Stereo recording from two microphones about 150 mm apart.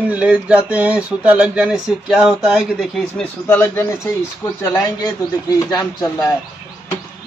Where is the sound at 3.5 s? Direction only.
15° left (ahead or behind).